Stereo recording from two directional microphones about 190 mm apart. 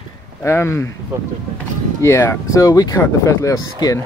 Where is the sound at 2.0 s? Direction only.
15° left (ahead or behind).